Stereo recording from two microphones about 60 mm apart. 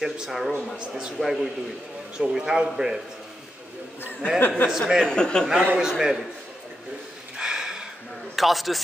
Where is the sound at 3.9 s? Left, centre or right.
Left.